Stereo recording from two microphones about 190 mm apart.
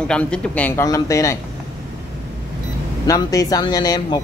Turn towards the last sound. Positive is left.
turn(degrees=20)  # may be behind; listen again after turning